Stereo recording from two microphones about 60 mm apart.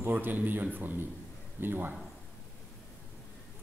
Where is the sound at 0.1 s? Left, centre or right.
Right.